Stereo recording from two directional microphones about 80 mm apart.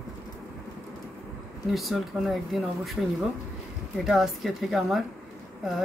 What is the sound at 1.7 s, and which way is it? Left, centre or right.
Speech, centre.